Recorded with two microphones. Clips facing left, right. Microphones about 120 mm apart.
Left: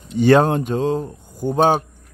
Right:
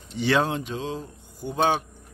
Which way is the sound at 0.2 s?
45° left (ahead or behind).